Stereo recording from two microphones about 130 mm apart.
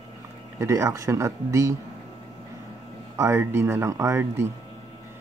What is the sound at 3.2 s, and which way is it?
Speech, 20° right (ahead or behind).